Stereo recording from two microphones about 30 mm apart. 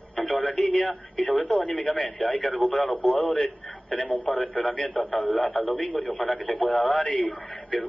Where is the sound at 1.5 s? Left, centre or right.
Left.